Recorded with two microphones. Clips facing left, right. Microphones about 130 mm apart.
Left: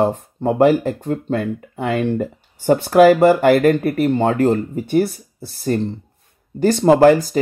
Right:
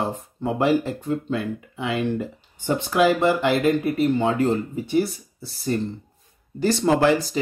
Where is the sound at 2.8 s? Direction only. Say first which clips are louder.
Left 8 dB; 65° left (ahead or behind); by 7.4 s 50° left (ahead or behind).